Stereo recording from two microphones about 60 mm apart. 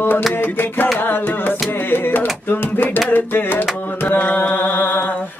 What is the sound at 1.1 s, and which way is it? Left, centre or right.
Music, left.